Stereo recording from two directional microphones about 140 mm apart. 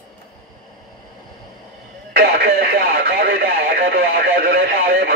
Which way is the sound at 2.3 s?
90° right.